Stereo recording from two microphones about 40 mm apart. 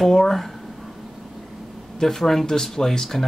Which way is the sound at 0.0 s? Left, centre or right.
Centre.